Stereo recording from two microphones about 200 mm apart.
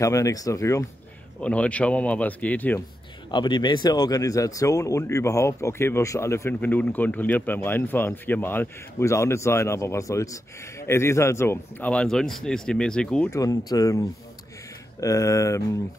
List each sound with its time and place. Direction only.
0.0 s speech: 15° left (ahead or behind)
3.3 s speech: 20° left (ahead or behind); by 13.3 s 5° left (ahead or behind)
13.3 s speech: 15° left (ahead or behind)